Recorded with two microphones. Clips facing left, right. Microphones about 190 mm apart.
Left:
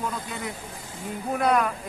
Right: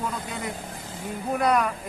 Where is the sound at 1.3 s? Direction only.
Centre (ahead or behind).